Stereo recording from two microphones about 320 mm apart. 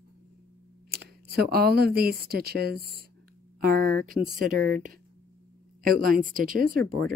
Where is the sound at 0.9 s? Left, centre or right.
Right.